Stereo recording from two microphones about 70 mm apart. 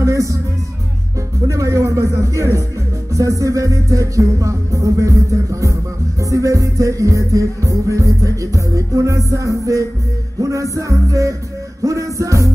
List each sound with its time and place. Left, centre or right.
0.0 s music: right
1.5 s speech: right
3.1 s music: right